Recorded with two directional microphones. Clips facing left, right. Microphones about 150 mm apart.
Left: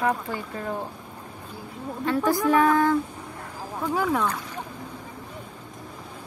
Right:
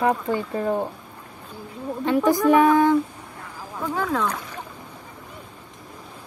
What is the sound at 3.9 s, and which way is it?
Speech, 10° left (ahead or behind).